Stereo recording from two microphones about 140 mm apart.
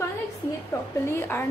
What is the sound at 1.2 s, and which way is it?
Speech, 20° left (ahead or behind).